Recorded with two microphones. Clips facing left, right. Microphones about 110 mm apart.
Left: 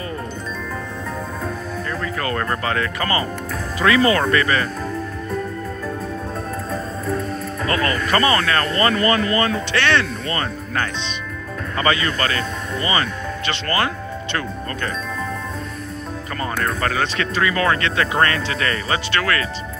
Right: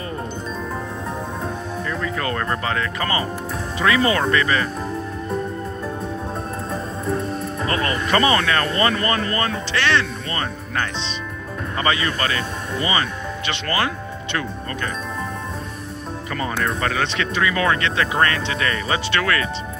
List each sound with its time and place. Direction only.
2.6 s speech: 25° right (ahead or behind)
6.7 s speech: 25° right (ahead or behind)
11.8 s speech: 25° right (ahead or behind)
17.0 s speech: 25° right (ahead or behind)